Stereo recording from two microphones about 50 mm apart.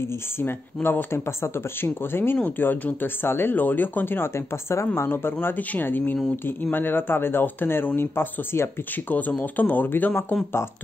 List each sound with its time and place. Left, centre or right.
0.8 s speech: left
4.6 s speech: left
5.6 s speech: left
5.9 s speech: left